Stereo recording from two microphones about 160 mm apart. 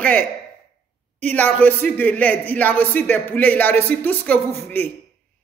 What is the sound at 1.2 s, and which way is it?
Speech, 10° left (ahead or behind).